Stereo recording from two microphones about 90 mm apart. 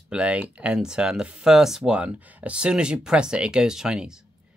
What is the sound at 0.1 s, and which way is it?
Speech, 10° right (ahead or behind).